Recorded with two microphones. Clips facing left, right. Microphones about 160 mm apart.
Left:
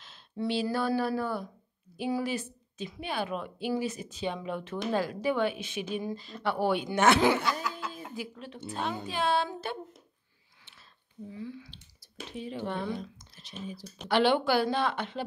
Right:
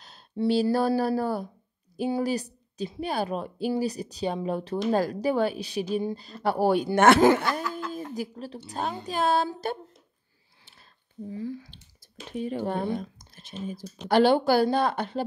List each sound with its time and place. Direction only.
0.0 s speech: 40° right (ahead or behind)
11.2 s speech: 40° right (ahead or behind)